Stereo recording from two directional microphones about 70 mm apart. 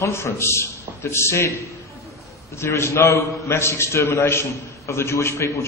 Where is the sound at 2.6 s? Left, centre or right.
Left.